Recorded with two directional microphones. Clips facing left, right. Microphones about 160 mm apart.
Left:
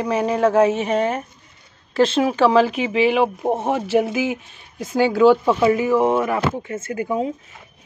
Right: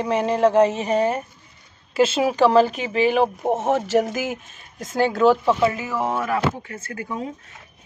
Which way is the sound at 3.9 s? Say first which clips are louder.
Left 2 dB; 5° left (ahead or behind).